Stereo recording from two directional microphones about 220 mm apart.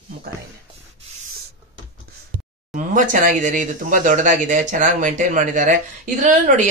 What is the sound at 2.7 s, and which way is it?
A woman's voice, 35° right (ahead or behind).